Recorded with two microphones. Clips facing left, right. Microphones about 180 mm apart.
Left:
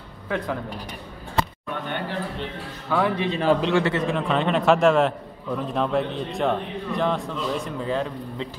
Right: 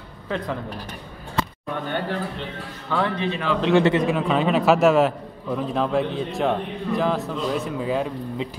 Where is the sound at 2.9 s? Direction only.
10° left (ahead or behind).